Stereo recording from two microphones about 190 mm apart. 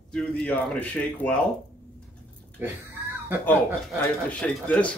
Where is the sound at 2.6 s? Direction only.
10° right (ahead or behind).